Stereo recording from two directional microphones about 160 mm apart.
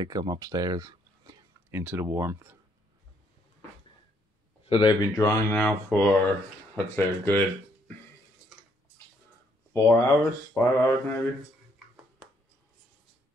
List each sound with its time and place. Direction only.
0.0 s speech: 25° right (ahead or behind)
4.6 s speech: 35° left (ahead or behind)
5.1 s speech: 20° left (ahead or behind)
9.8 s speech: 15° left (ahead or behind)